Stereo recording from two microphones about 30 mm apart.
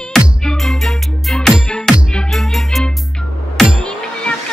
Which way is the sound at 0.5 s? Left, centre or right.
Centre.